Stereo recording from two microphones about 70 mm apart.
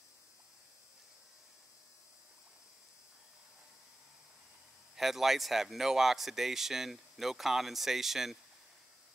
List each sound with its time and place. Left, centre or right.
4.9 s speech: centre